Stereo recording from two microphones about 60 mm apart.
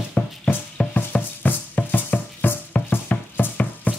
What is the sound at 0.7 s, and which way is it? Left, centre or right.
Music, left.